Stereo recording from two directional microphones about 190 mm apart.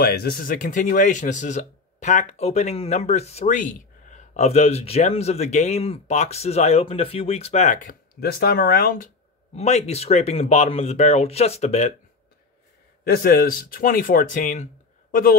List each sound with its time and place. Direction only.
0.0 s speech: 55° left (ahead or behind)
9.6 s speech: 35° left (ahead or behind)
13.0 s speech: 50° left (ahead or behind)